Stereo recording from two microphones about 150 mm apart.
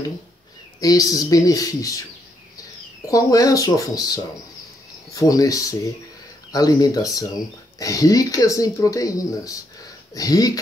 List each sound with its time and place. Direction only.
0.7 s speech: 25° left (ahead or behind)
3.1 s speech: 25° left (ahead or behind)